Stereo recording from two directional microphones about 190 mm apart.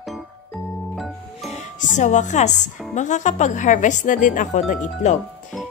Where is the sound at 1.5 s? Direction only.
40° left (ahead or behind).